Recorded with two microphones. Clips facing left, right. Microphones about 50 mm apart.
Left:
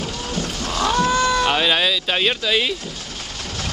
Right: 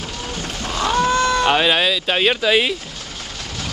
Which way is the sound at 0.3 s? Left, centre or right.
Centre.